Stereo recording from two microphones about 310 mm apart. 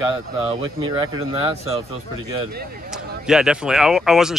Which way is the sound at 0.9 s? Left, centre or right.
Centre.